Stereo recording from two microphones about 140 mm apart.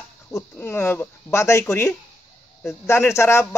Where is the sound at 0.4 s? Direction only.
15° left (ahead or behind).